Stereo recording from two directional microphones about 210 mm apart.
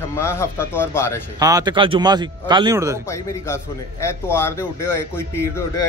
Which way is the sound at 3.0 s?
15° left (ahead or behind).